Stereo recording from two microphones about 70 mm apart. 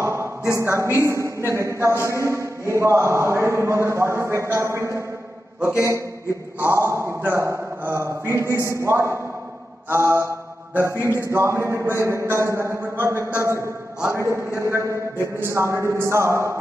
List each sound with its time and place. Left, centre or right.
0.0 s a sound: right
0.6 s a man's voice: right
6.6 s a man's voice: right
9.8 s mantra: right
11.2 s a man's voice: right
13.0 s mantra: right
14.0 s a man's voice: right